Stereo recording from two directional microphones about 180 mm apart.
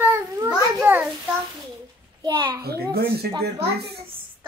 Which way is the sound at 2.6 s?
60° right (ahead or behind).